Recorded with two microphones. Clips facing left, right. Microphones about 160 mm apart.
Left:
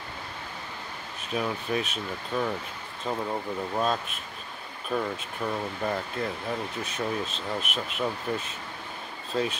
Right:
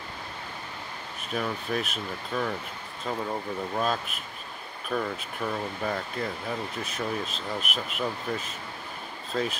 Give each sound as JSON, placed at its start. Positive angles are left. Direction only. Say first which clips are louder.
{"t": 1.3, "sound": "speech", "louder": "left 1 dB", "side_deg": 0}
{"t": 3.7, "sound": "speech", "louder": "left 1 dB", "side_deg": 0}